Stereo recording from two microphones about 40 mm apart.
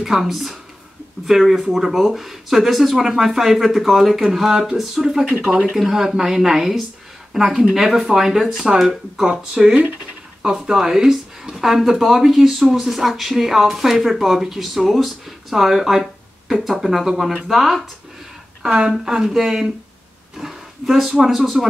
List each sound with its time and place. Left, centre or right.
0.0 s speech: centre
5.8 s speech: centre
18.7 s speech: right